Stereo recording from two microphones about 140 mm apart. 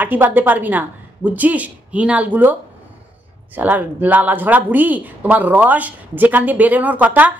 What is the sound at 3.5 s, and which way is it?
Speech, 10° right (ahead or behind).